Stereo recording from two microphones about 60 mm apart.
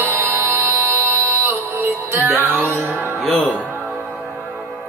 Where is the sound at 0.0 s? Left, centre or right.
Right.